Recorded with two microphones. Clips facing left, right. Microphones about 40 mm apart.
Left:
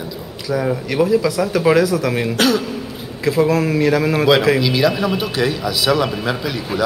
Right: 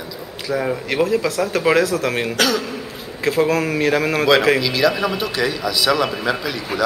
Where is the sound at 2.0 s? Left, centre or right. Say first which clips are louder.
Left 1 dB; right.